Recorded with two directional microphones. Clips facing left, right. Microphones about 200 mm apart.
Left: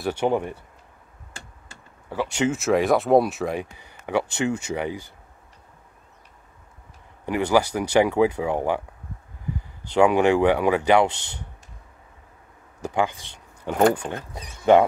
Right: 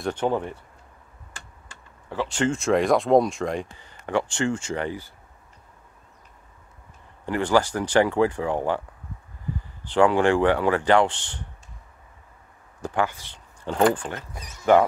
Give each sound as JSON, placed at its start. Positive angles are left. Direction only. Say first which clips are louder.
{"t": 0.0, "sound": "speech", "louder": "left 2 dB", "side_deg": 10}
{"t": 2.0, "sound": "speech", "louder": "left 1 dB", "side_deg": 10}
{"t": 7.2, "sound": "speech", "louder": "left 1 dB", "side_deg": 10}
{"t": 12.8, "sound": "speech", "louder": "left 1 dB", "side_deg": 15}
{"t": 14.3, "sound": "speech", "louder": "left 2 dB", "side_deg": 30}